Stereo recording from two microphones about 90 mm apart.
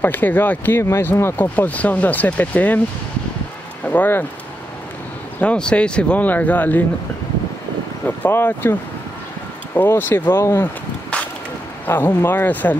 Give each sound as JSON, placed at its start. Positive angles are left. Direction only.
{"t": 0.0, "sound": "speech", "side_deg": 20}
{"t": 0.8, "sound": "speech", "side_deg": 30}
{"t": 3.8, "sound": "speech", "side_deg": 20}
{"t": 5.4, "sound": "speech", "side_deg": 15}
{"t": 8.2, "sound": "speech", "side_deg": 25}
{"t": 9.8, "sound": "speech", "side_deg": 25}
{"t": 11.8, "sound": "speech", "side_deg": 25}